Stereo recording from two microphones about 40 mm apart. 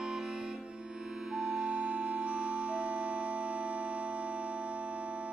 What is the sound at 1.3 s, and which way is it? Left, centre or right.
Keyboard, centre.